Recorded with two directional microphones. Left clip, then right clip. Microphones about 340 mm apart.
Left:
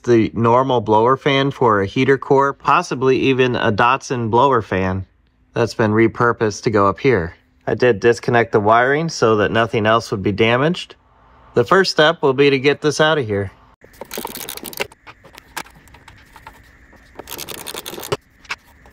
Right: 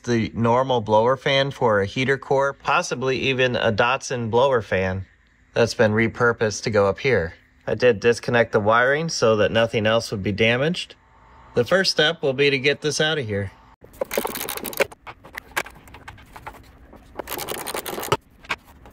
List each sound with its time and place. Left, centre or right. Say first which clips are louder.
0.0 s speech: left 8 dB; centre
17.2 s scratch: right 2 dB; centre